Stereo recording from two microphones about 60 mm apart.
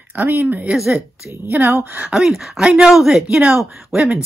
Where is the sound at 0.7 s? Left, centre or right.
Centre.